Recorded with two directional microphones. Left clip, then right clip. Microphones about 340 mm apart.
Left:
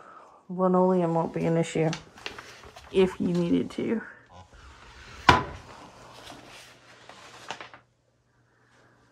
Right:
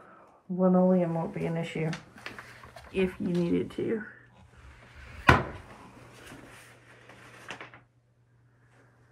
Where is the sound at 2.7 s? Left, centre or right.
Centre.